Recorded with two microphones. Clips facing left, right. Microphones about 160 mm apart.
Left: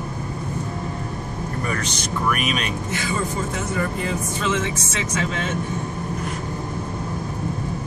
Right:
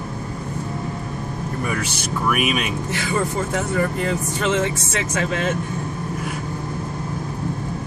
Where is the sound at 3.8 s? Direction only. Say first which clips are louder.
Right 2 dB; 60° right (ahead or behind).